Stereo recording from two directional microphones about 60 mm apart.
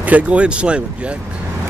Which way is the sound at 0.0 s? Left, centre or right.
Right.